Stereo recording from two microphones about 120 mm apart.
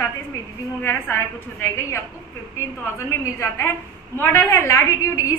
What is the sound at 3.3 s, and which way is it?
A woman's voice, 25° left (ahead or behind).